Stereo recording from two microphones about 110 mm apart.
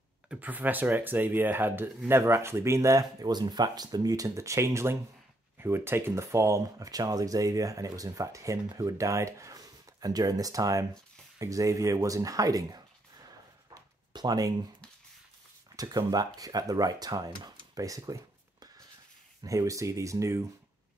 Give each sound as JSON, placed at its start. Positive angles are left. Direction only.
{"t": 0.3, "sound": "speech", "side_deg": -15}
{"t": 13.7, "sound": "a sound", "side_deg": -35}
{"t": 15.7, "sound": "speech", "side_deg": -35}